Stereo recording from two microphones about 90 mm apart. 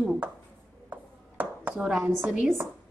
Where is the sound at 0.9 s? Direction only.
20° right (ahead or behind).